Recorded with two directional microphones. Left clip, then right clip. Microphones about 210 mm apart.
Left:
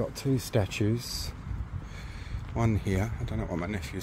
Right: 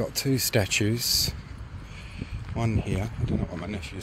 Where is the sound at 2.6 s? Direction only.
10° left (ahead or behind).